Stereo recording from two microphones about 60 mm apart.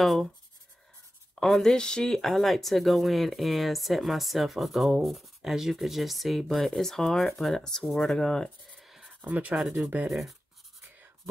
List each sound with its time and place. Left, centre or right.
0.0 s speech: centre
1.4 s speech: centre
8.7 s writing: centre
9.2 s speech: right
9.6 s speech: centre